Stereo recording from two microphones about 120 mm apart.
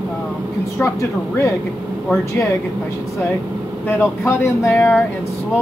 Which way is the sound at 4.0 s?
20° left (ahead or behind).